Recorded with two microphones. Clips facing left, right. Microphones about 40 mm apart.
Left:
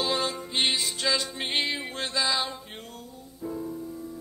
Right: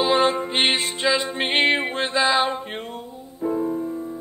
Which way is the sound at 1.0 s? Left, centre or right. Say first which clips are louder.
Right 7 dB; right.